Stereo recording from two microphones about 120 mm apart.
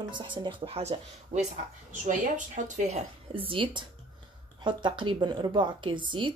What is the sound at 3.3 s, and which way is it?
A woman's voice, 50° right (ahead or behind).